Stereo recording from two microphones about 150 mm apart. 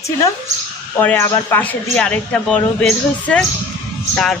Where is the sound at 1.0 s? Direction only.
15° left (ahead or behind).